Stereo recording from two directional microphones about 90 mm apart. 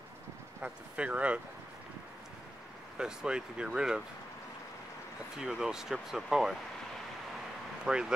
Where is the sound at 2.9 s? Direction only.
10° right (ahead or behind).